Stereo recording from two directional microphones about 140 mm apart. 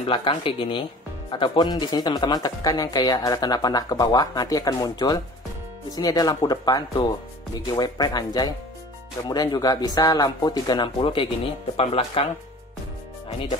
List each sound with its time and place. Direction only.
0.0 s speech: 40° left (ahead or behind)